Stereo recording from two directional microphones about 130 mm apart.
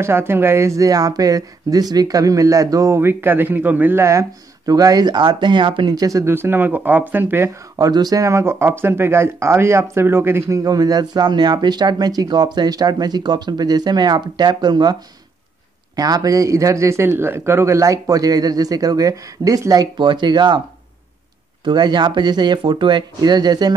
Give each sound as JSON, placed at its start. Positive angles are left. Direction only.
{"t": 0.0, "sound": "speech", "side_deg": -20}
{"t": 16.0, "sound": "speech", "side_deg": -30}
{"t": 21.6, "sound": "speech", "side_deg": -35}